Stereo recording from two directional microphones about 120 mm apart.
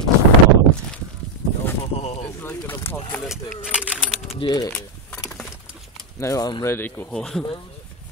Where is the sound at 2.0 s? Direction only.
60° left (ahead or behind).